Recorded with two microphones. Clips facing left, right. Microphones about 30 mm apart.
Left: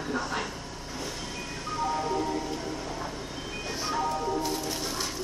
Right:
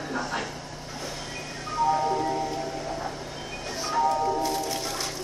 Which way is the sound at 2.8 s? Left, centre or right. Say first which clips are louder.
Right 3 dB; centre.